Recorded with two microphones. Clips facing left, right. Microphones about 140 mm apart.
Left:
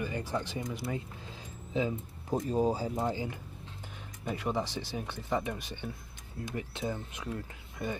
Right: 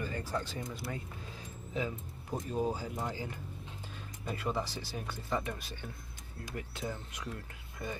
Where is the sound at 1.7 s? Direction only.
25° left (ahead or behind).